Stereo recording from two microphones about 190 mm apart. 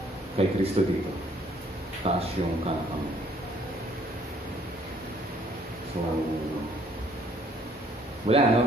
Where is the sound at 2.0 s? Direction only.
30° right (ahead or behind).